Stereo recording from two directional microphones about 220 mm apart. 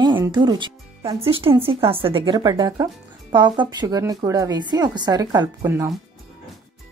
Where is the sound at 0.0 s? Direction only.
20° right (ahead or behind).